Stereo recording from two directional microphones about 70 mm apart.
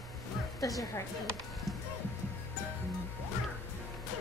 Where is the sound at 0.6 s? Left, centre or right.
Left.